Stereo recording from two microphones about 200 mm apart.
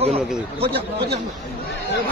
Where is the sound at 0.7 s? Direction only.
55° right (ahead or behind).